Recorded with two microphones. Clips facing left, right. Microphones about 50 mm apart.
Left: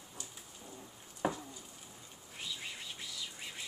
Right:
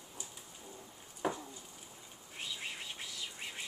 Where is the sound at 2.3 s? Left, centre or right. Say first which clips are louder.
Right 1 dB; centre.